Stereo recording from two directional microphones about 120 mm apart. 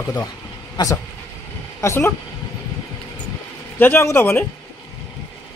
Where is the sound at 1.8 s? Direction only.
25° left (ahead or behind).